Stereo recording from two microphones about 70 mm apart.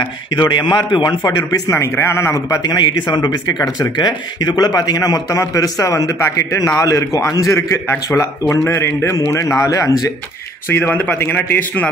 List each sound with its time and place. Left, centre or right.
0.4 s a man's voice: left
1.7 s a man's voice: left
2.6 s speech: left
3.9 s speech: left
5.4 s a man's voice: left
8.2 s a man's voice: left
10.7 s a man's voice: left